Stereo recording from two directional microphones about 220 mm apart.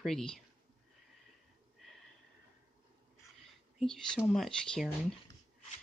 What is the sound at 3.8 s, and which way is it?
Speech, centre (ahead or behind).